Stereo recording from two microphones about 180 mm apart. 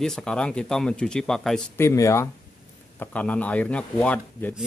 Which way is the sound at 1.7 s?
15° left (ahead or behind).